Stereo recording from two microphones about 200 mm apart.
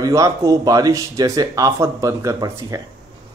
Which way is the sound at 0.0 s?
15° right (ahead or behind).